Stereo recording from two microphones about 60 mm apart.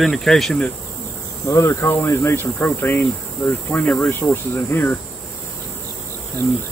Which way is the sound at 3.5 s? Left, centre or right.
Left.